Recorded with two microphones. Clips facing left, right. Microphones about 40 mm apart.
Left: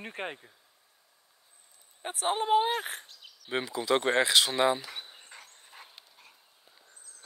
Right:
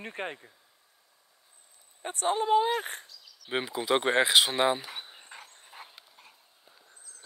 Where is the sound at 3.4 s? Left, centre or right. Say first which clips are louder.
Even; centre.